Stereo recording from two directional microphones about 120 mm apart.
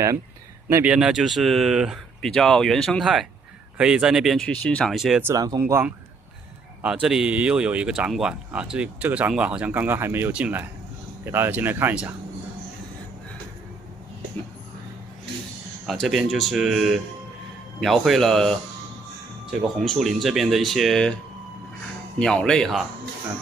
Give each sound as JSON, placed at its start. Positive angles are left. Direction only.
{"t": 0.8, "sound": "speech", "side_deg": -5}
{"t": 4.5, "sound": "speech", "side_deg": 10}
{"t": 4.9, "sound": "speech", "side_deg": -5}
{"t": 5.2, "sound": "speech", "side_deg": -30}
{"t": 6.8, "sound": "speech", "side_deg": -5}
{"t": 15.9, "sound": "speech", "side_deg": 0}
{"t": 19.8, "sound": "speech", "side_deg": 0}
{"t": 22.2, "sound": "speech", "side_deg": 5}